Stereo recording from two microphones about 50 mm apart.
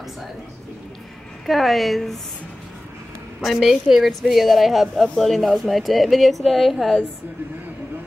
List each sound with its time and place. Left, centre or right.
1.4 s a woman's voice: centre
3.3 s a woman's voice: centre